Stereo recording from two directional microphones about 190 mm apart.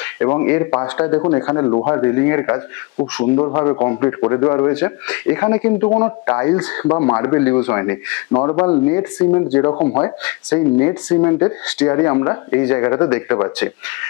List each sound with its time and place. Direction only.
0.4 s speech: 10° left (ahead or behind)
3.0 s speech: 25° left (ahead or behind)
4.7 s speech: 5° left (ahead or behind)
5.8 s speech: 20° left (ahead or behind)
8.4 s speech: 20° left (ahead or behind)
9.7 s speech: 25° left (ahead or behind)